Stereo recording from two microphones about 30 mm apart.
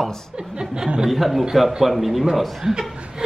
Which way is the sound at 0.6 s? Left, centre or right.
Right.